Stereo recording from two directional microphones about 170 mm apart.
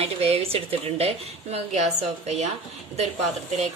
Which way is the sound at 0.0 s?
35° right (ahead or behind).